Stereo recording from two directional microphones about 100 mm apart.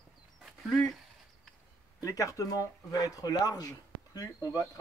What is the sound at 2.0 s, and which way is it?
Speech, 35° left (ahead or behind).